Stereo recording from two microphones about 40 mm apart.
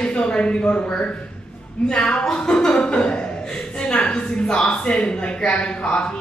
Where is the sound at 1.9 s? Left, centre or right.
Centre.